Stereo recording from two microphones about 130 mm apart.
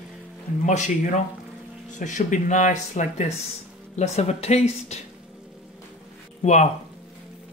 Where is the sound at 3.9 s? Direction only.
60° left (ahead or behind).